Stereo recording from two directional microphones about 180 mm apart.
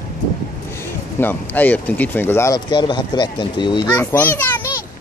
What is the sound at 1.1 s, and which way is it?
Speech, 10° left (ahead or behind).